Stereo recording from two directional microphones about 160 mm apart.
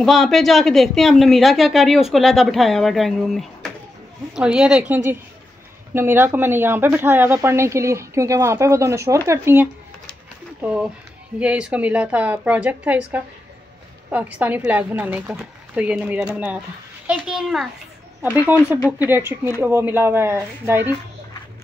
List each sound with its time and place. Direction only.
0.0 s speech: centre (ahead or behind)